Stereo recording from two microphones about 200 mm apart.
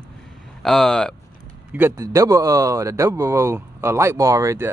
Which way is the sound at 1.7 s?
15° right (ahead or behind).